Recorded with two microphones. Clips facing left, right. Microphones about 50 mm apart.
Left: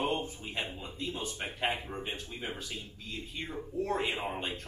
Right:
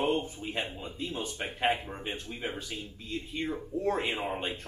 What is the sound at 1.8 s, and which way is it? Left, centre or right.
Speech, centre.